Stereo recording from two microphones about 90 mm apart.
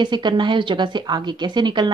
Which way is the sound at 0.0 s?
60° right (ahead or behind).